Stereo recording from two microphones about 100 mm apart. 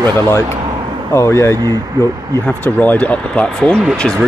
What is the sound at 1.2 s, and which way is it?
Speech, 25° left (ahead or behind).